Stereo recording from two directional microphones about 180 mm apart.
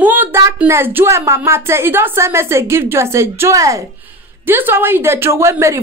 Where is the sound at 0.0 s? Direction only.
10° right (ahead or behind).